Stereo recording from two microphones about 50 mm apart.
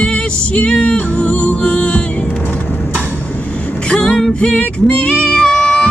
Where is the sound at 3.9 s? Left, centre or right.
Centre.